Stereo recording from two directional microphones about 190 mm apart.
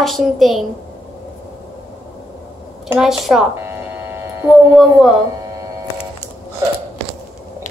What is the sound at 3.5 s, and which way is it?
Hum, 15° right (ahead or behind).